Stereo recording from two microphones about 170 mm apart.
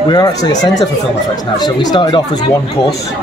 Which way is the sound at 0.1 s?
20° left (ahead or behind).